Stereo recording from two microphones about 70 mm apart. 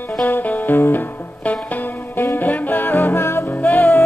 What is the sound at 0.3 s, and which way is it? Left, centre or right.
Music, left.